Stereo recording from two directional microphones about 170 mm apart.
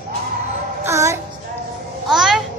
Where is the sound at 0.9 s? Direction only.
15° right (ahead or behind).